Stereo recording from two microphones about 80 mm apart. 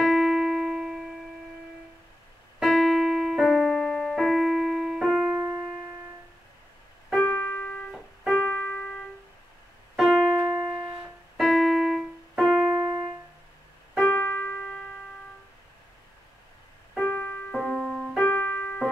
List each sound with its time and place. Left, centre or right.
0.0 s music: centre
2.6 s keyboard: centre
5.0 s music: centre
7.2 s keyboard: left; by 10.3 s centre
10.4 s music: centre
11.3 s keyboard: centre
13.9 s keyboard: centre
17.0 s keyboard: centre
17.6 s music: centre; by 18.8 s left